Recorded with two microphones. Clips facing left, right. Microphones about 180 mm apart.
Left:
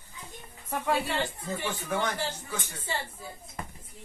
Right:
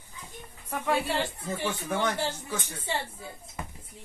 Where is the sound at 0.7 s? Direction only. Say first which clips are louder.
Right 1 dB; centre (ahead or behind).